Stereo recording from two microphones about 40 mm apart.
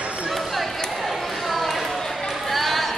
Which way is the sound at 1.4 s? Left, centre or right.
Centre.